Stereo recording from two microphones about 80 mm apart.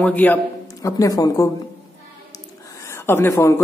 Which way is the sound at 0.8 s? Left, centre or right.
Left.